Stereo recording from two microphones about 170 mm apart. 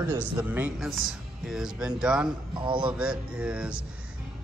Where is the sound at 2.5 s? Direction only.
30° right (ahead or behind).